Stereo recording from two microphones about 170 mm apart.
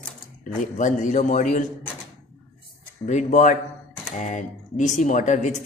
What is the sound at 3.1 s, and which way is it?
Speech, 45° left (ahead or behind).